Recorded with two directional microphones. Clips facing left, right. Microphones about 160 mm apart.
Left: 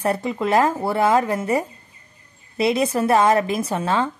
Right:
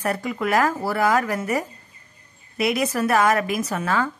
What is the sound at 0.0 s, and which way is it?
Speech, 25° left (ahead or behind).